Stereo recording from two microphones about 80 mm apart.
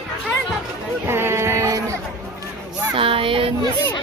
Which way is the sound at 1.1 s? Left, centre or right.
Right.